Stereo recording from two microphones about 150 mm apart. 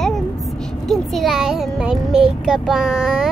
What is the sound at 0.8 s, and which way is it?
A child's voice, centre (ahead or behind).